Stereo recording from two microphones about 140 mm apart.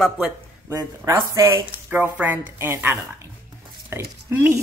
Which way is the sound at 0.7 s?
25° right (ahead or behind).